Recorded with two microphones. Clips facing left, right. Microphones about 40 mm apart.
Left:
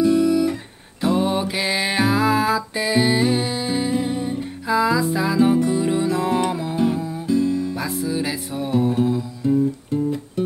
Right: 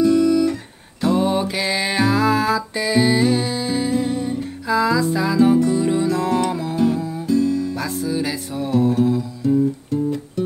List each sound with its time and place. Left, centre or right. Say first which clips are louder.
0.0 s music: right 2 dB; centre
7.2 s music: right 1 dB; left